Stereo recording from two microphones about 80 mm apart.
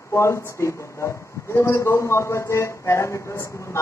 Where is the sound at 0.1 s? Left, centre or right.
Left.